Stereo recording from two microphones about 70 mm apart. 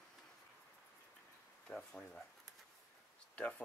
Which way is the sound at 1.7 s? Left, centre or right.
Centre.